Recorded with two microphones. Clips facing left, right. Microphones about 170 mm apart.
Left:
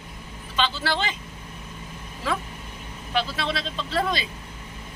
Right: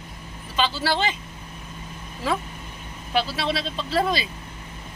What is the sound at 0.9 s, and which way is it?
Speech, 35° right (ahead or behind).